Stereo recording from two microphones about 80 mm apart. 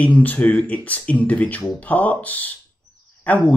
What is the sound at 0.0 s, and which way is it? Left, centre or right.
Speech, centre.